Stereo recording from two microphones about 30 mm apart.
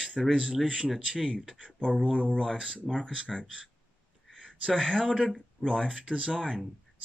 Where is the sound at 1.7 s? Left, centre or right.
Left.